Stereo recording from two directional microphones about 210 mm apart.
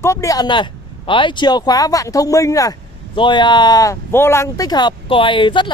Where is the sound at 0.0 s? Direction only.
15° left (ahead or behind).